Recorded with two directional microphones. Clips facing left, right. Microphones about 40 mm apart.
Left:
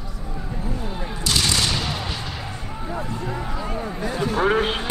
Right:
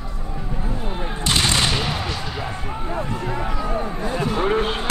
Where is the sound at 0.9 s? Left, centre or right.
Right.